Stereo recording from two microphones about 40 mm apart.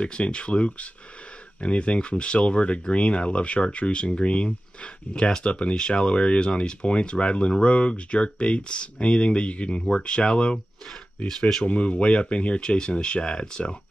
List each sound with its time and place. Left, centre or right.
0.0 s speech: left
11.2 s speech: centre
11.6 s speech: left